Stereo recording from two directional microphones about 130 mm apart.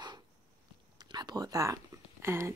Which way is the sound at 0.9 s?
30° right (ahead or behind).